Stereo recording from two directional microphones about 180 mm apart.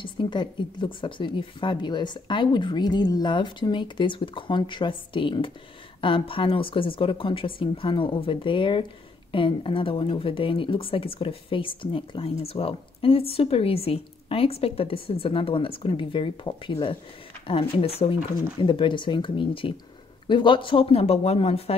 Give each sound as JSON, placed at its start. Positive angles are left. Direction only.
{"t": 0.0, "sound": "speech", "side_deg": 25}